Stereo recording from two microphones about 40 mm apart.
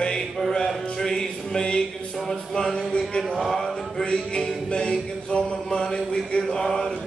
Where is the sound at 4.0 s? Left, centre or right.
Left.